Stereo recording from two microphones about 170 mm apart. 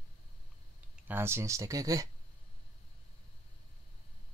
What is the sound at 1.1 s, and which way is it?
Speech, 15° right (ahead or behind).